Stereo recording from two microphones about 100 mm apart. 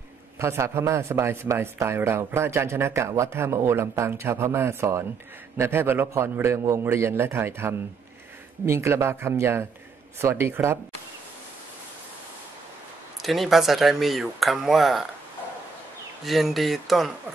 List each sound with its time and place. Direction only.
0.4 s speech: 25° right (ahead or behind)
13.2 s speech: centre (ahead or behind)
16.3 s speech: centre (ahead or behind)